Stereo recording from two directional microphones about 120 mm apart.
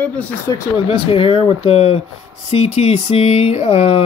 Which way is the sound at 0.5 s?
45° left (ahead or behind).